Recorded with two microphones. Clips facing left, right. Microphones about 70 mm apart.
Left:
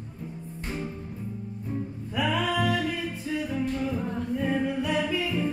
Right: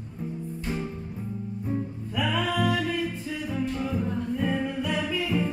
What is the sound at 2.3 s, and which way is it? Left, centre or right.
Music, centre.